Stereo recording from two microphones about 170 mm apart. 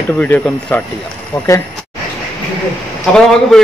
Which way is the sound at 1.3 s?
25° left (ahead or behind).